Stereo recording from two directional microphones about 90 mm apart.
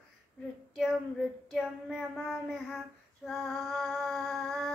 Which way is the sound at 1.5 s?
5° right (ahead or behind).